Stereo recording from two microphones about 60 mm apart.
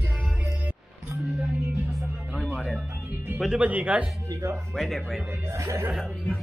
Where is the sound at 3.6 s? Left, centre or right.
Right.